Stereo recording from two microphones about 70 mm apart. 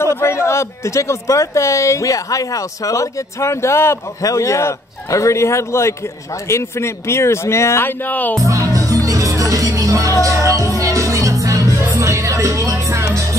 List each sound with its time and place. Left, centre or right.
0.1 s speech: left
8.1 s speech: left
8.6 s music: right